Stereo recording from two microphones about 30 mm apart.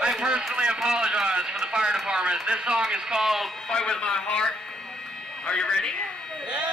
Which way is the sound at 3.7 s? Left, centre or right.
Left.